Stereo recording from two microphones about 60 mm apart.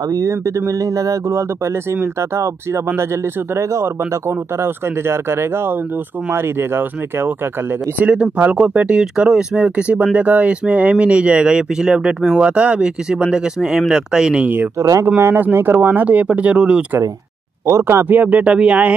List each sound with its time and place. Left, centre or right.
0.1 s speech: right
8.0 s speech: right
14.8 s speech: right
15.1 s speech: right; by 16.8 s centre
17.6 s speech: right
18.0 s speech: right